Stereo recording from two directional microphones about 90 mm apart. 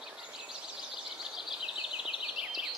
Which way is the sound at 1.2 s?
5° right (ahead or behind).